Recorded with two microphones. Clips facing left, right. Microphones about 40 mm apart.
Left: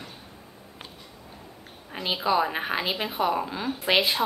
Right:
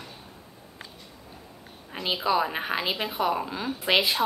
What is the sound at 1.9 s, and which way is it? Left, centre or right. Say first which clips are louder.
A woman's voice: left 1 dB; centre.